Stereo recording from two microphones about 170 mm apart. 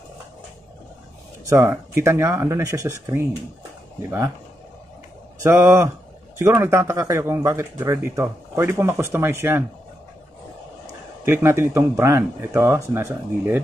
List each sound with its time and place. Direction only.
1.4 s speech: 15° right (ahead or behind)
5.4 s speech: 15° right (ahead or behind)
11.2 s speech: 15° right (ahead or behind)